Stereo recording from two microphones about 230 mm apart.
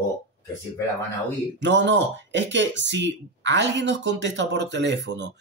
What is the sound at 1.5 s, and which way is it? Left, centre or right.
Speech, right.